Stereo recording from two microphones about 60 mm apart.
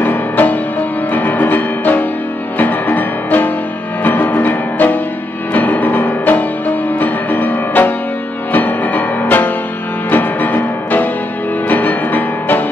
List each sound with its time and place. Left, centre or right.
0.0 s music: left